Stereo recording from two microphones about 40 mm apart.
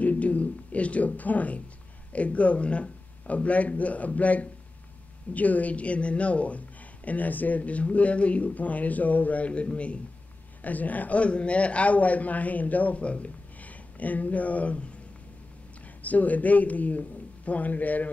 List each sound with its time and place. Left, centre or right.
0.0 s a sound: left
2.1 s speech: left
7.1 s speech: left
10.6 s speech: left
16.0 s speech: left